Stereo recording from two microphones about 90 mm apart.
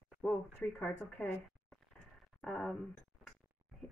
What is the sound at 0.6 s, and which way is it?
Speech, 15° left (ahead or behind).